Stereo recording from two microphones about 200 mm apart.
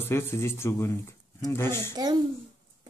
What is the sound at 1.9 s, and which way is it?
Speech, 20° right (ahead or behind).